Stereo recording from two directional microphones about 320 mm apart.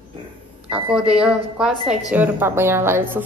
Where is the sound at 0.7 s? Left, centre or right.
Centre.